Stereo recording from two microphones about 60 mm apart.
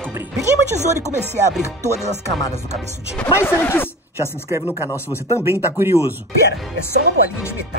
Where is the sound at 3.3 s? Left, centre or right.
Left.